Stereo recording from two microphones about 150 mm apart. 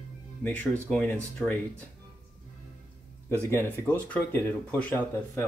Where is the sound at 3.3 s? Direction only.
15° left (ahead or behind).